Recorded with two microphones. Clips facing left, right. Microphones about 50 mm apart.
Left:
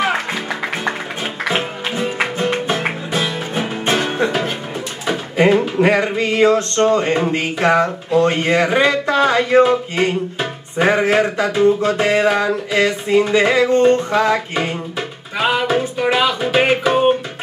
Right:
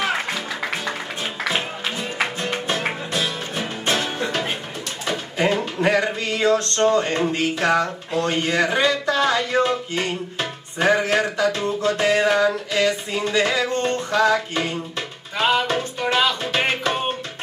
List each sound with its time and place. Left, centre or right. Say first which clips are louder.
0.0 s music: left 4 dB; centre
1.4 s music: left 4 dB; centre
5.8 s speech: left 5 dB; left
15.0 s music: left 3 dB; centre